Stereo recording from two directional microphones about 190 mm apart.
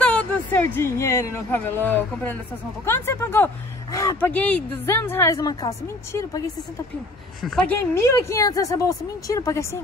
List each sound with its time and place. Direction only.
0.0 s speech: 10° left (ahead or behind)
7.4 s speech: 5° left (ahead or behind)